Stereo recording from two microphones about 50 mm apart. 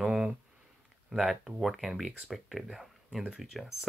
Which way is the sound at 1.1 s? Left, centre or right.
Centre.